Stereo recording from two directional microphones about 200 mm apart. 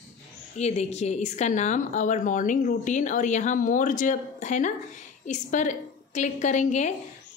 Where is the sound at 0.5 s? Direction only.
35° left (ahead or behind).